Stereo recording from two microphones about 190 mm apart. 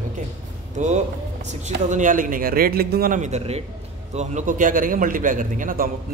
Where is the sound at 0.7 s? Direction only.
40° right (ahead or behind).